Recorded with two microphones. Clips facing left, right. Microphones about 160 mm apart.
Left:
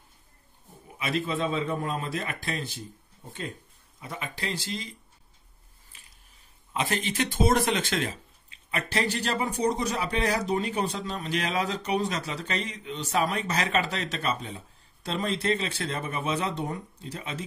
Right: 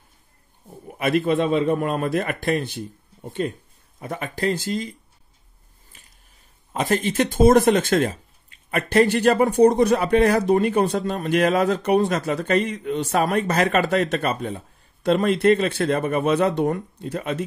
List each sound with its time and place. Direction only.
0.8 s speech: 55° right (ahead or behind)
4.0 s speech: 50° right (ahead or behind)
6.7 s speech: 45° right (ahead or behind)